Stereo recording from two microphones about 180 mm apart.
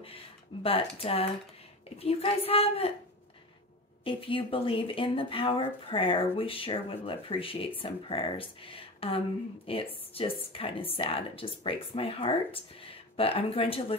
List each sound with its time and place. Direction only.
0.0 s speech: 30° left (ahead or behind)
4.0 s speech: 30° left (ahead or behind)